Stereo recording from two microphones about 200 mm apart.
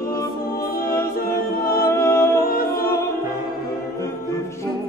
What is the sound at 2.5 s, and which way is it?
Music, 45° left (ahead or behind).